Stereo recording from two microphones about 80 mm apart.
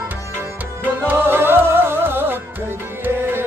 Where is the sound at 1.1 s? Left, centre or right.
Right.